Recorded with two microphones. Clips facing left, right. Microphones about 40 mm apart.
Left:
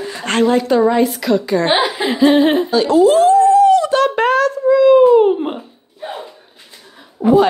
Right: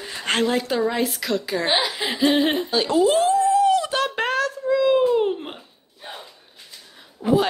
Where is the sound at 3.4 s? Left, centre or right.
Centre.